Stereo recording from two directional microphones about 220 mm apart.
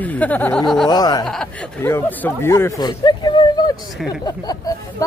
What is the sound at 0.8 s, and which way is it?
Speech, 20° left (ahead or behind).